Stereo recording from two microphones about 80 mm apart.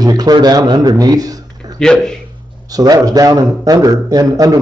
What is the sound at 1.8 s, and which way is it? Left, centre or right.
Speech, centre.